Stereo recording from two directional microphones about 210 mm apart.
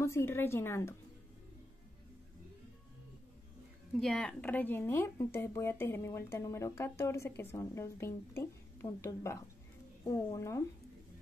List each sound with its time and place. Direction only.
0.0 s speech: 10° left (ahead or behind)
4.0 s speech: 5° left (ahead or behind)